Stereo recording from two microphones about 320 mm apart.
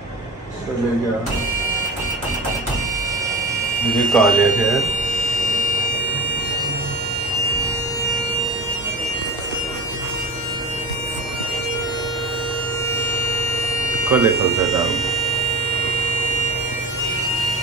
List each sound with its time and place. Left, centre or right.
4.1 s speech: centre
5.3 s a sound: left
14.1 s speech: centre